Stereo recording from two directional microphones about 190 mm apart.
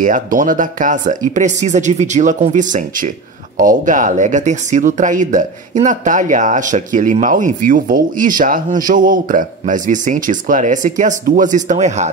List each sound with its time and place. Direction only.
0.0 s speech: 45° right (ahead or behind)